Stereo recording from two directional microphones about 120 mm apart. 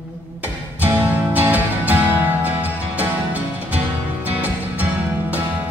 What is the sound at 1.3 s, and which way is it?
Music, 15° right (ahead or behind).